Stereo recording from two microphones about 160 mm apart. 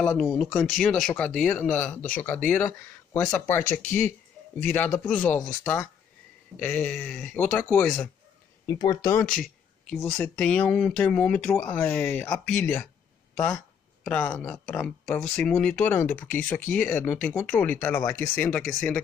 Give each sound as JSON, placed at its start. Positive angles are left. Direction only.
{"t": 0.0, "sound": "speech", "side_deg": 5}
{"t": 6.5, "sound": "speech", "side_deg": 5}
{"t": 8.6, "sound": "speech", "side_deg": 20}
{"t": 9.2, "sound": "speech", "side_deg": 5}